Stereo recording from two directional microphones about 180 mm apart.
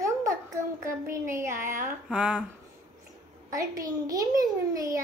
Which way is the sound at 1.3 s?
15° right (ahead or behind).